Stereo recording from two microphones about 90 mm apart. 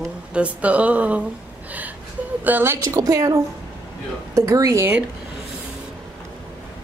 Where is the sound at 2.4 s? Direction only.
20° right (ahead or behind).